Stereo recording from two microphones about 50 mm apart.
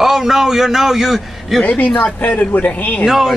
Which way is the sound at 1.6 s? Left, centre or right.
Left.